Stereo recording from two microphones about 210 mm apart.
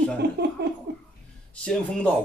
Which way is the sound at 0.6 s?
50° right (ahead or behind).